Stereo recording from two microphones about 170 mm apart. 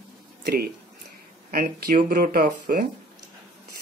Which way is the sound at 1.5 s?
60° right (ahead or behind).